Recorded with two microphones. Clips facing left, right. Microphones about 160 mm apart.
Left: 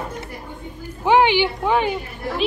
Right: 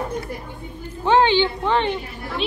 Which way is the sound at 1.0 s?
15° left (ahead or behind).